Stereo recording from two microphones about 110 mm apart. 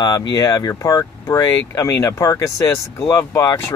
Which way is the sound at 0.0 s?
40° left (ahead or behind).